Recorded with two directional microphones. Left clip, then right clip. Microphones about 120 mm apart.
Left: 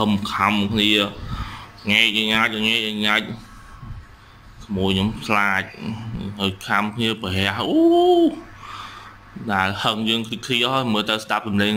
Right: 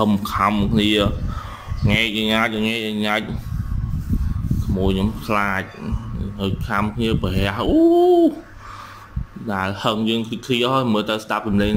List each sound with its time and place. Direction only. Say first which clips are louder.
0.0 s speech: right 1 dB; 30° right (ahead or behind)
4.7 s speech: left 1 dB; 15° right (ahead or behind)
9.5 s speech: left 1 dB; 5° right (ahead or behind)